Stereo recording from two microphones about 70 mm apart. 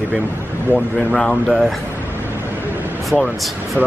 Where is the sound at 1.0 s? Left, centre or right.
Left.